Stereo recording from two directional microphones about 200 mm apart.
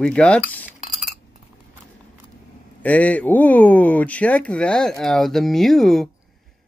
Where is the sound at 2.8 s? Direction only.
5° left (ahead or behind).